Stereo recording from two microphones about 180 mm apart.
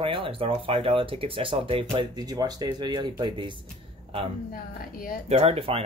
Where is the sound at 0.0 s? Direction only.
30° right (ahead or behind).